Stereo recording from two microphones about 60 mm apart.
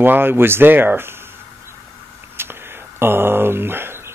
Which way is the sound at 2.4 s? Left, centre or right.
Right.